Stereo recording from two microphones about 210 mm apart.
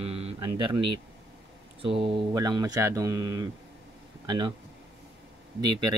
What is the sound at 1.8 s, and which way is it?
Speech, 25° right (ahead or behind).